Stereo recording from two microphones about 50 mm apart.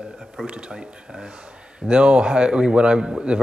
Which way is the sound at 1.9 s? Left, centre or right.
Centre.